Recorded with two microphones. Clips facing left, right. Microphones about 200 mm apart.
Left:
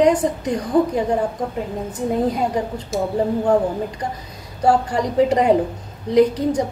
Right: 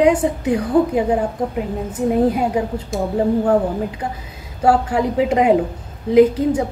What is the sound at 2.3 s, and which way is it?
A woman's voice, 5° right (ahead or behind).